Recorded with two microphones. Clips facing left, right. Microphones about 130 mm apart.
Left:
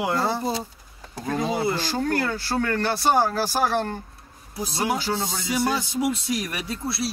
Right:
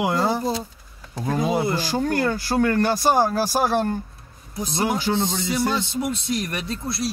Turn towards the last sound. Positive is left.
turn(degrees=5)  # may be behind; listen again after turning